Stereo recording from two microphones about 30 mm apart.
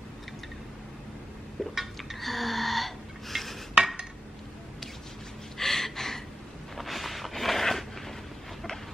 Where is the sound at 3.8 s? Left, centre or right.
Right.